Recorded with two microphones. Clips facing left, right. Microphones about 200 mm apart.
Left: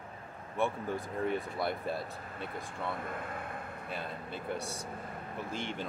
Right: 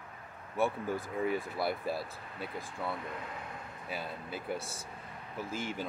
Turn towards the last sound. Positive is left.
turn(degrees=-5)  # may be behind; listen again after turning